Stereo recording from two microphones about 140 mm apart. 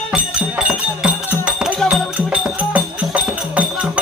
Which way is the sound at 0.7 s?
10° right (ahead or behind).